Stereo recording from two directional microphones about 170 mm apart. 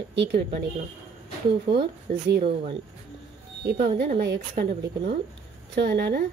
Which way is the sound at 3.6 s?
65° right (ahead or behind).